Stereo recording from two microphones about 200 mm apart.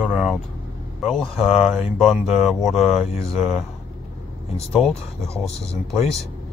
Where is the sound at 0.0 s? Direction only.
Centre (ahead or behind).